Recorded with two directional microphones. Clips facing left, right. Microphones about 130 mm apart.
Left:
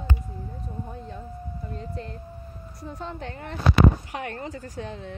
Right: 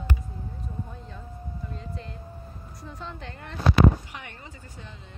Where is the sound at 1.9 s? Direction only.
45° left (ahead or behind).